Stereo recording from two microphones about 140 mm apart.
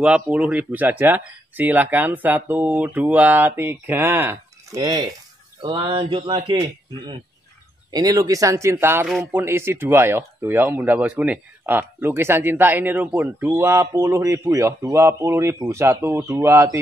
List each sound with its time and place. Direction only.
0.0 s speech: 10° right (ahead or behind)